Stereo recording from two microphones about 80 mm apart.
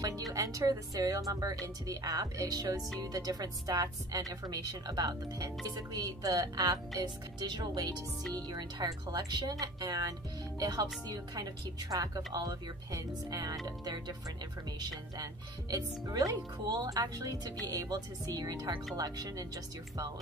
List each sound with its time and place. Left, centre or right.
0.3 s speech: right
15.7 s speech: right